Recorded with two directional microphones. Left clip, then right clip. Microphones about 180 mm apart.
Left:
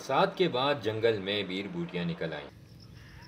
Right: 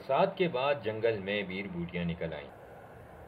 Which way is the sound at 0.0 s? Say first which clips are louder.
Left 1 dB; 15° left (ahead or behind).